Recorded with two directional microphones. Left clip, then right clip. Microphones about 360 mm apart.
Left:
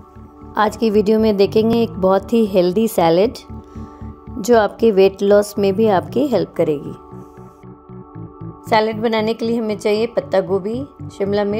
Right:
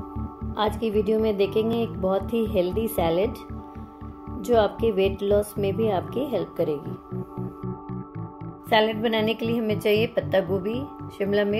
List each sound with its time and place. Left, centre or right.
0.6 s a woman's voice: left
4.4 s a woman's voice: left
8.6 s a woman's voice: centre